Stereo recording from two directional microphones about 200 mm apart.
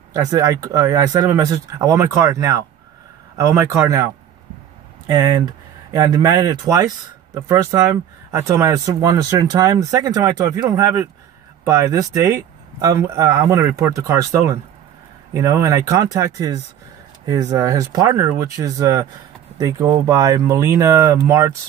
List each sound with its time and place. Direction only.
0.1 s speech: 15° right (ahead or behind)
5.1 s speech: 20° right (ahead or behind)